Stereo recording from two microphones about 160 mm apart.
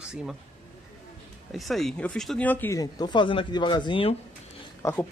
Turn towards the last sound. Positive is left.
turn(degrees=10)  # may be behind; listen again after turning